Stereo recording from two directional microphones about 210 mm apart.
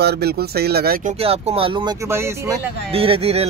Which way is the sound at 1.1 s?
30° right (ahead or behind).